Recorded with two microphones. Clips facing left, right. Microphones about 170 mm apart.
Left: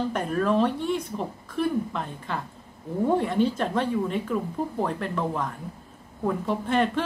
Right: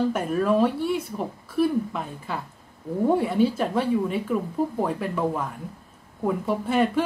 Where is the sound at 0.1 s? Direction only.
5° right (ahead or behind).